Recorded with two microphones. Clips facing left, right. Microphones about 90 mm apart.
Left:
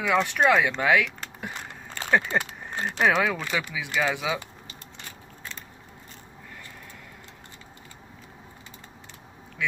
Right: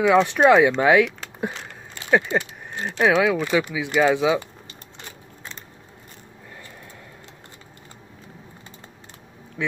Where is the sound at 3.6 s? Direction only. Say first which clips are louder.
Right 7 dB; 20° right (ahead or behind).